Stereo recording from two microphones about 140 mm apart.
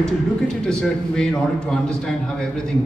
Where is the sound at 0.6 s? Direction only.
5° left (ahead or behind).